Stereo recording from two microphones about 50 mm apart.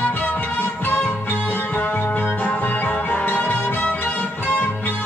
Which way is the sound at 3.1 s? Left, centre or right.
Left.